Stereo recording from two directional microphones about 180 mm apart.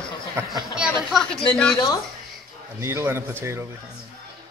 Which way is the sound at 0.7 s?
5° right (ahead or behind).